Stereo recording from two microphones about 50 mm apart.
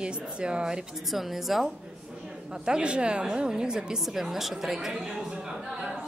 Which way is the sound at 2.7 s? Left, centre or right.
Centre.